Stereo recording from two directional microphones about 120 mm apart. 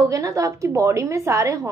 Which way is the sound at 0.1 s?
25° right (ahead or behind).